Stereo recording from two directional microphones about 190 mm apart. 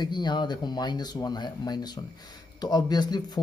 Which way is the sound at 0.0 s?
25° left (ahead or behind).